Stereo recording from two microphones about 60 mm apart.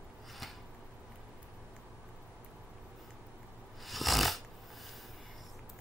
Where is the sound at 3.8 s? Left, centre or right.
Centre.